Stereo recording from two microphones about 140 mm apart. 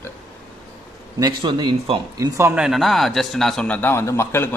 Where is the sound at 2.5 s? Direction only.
5° right (ahead or behind).